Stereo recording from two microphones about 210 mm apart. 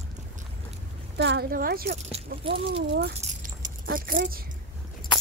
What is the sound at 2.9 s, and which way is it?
Keys jangling, 45° right (ahead or behind).